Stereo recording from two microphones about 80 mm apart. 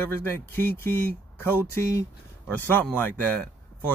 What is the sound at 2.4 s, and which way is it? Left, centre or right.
Speech, left.